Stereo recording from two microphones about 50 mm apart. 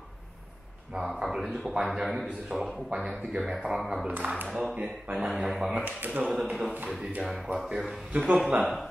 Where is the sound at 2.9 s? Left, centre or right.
Right.